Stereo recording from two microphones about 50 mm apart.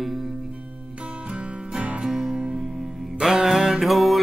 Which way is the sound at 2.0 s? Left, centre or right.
Centre.